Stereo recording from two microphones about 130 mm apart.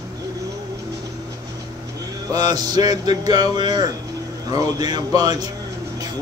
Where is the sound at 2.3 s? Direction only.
30° right (ahead or behind).